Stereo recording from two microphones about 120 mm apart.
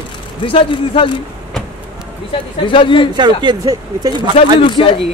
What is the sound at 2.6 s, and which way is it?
Speech, 45° left (ahead or behind).